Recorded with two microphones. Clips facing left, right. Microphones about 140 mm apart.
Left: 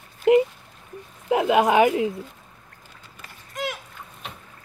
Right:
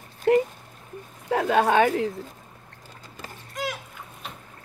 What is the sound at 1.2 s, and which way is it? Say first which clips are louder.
Speech: left 2 dB; 15° left (ahead or behind).